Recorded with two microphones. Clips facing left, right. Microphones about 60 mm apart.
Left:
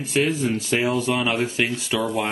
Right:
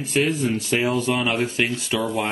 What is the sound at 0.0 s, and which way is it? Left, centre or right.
Speech, centre.